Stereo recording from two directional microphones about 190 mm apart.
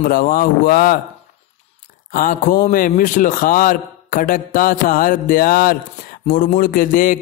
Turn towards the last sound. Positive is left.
turn(degrees=50)  # may be behind; listen again after turning